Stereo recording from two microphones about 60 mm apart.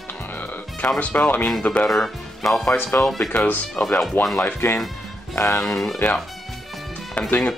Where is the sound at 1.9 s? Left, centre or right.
Centre.